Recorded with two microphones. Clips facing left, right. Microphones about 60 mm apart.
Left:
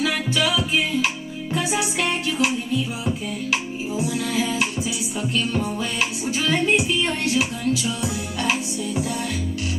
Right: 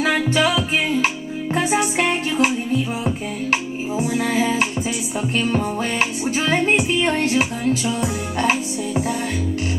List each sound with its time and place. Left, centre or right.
0.0 s music: right